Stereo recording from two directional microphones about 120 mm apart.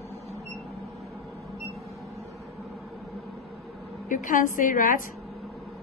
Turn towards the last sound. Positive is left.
turn(degrees=90)